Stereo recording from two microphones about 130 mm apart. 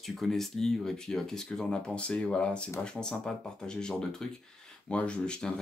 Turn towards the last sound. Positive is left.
turn(degrees=5)  # may be behind; listen again after turning